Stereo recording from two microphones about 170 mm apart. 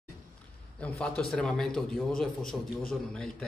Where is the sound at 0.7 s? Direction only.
5° left (ahead or behind).